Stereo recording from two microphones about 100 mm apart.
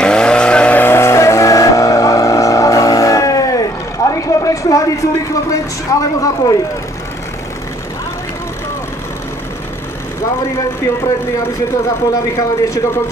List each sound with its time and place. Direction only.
0.0 s vehicle: 10° left (ahead or behind); by 3.6 s 35° left (ahead or behind)
4.1 s a sound: 35° left (ahead or behind)
12.1 s speech: 35° left (ahead or behind)